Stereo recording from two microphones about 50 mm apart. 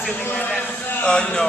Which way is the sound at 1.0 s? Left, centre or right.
Centre.